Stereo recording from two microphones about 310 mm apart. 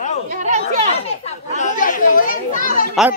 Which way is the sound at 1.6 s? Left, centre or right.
Left.